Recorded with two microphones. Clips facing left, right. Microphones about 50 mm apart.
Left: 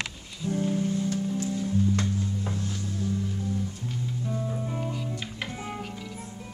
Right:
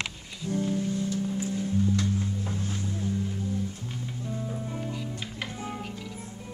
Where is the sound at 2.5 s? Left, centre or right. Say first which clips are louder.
Even; right.